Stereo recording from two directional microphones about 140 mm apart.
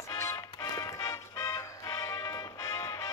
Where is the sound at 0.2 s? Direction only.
20° left (ahead or behind).